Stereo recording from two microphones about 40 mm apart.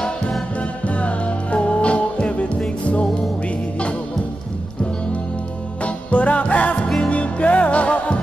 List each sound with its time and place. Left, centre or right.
0.8 s music: left
6.0 s music: left